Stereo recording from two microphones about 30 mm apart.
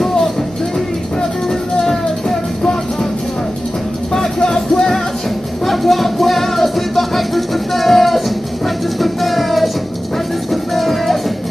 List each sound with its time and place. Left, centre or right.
1.5 s music: centre
4.1 s music: centre